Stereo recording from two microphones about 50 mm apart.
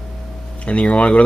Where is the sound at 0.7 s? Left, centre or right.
Left.